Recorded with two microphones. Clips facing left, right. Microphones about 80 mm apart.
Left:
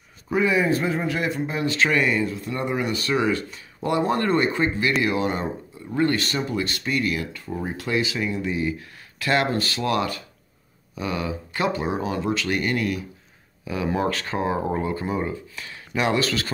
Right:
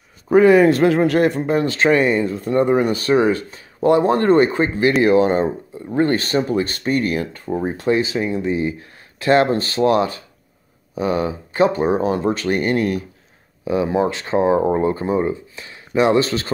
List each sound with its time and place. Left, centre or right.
0.3 s speech: right
13.7 s speech: right